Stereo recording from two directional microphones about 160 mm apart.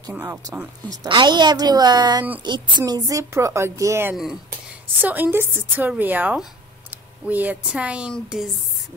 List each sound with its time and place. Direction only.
0.1 s a woman's voice: 15° right (ahead or behind)